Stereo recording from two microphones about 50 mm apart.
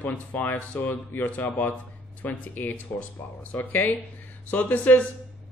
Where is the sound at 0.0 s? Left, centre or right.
Left.